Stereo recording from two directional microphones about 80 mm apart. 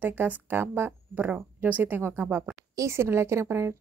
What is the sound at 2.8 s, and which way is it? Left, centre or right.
Speech, right.